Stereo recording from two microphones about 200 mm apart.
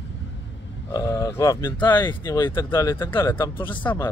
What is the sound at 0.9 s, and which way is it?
Speech, 15° left (ahead or behind).